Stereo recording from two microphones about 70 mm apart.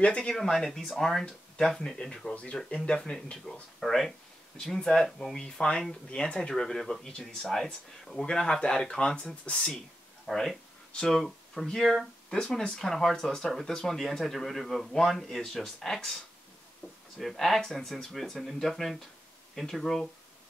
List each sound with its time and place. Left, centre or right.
0.0 s speech: centre
0.3 s speech: centre
10.2 s speech: centre
17.2 s speech: centre